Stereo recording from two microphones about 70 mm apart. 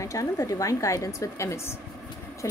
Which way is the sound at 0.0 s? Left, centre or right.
Left.